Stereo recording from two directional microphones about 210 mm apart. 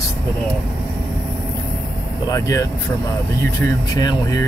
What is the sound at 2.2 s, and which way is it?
Speech, 15° left (ahead or behind).